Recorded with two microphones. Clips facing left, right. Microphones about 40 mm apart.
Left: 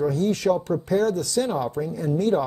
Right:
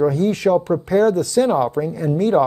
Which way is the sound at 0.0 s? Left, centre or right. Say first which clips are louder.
Right 5 dB; right.